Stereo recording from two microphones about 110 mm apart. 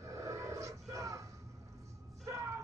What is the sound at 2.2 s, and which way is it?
Music, 30° right (ahead or behind).